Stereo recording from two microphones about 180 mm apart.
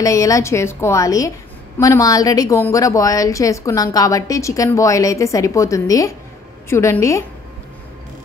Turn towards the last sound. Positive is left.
turn(degrees=15)  # may be behind; listen again after turning